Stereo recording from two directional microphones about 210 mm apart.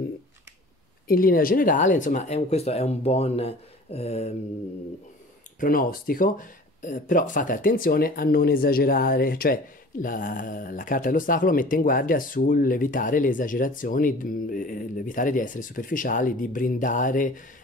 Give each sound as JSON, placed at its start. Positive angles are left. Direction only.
{"t": 1.0, "sound": "speech", "side_deg": 40}
{"t": 5.6, "sound": "speech", "side_deg": 40}